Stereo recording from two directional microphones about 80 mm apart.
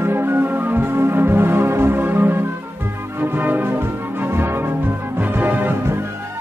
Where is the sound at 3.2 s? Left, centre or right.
Right.